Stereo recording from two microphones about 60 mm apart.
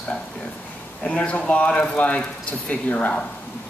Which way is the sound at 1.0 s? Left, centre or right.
Left.